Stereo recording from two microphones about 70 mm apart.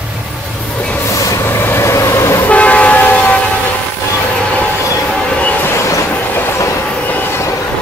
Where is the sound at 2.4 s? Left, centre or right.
Left.